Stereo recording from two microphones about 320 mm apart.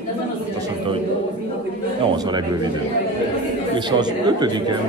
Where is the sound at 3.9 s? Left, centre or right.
Centre.